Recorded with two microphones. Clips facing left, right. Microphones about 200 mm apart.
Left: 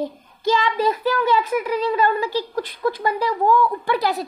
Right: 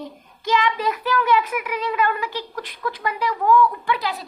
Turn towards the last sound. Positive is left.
turn(degrees=40)  # may be behind; listen again after turning